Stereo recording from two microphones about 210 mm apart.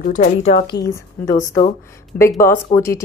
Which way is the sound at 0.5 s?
20° left (ahead or behind).